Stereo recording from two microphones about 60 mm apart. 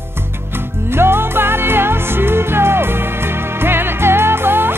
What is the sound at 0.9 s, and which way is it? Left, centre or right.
Music, right.